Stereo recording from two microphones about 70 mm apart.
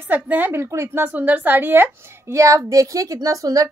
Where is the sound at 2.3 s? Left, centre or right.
Right.